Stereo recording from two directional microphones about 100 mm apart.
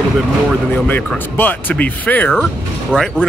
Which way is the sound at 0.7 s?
20° left (ahead or behind).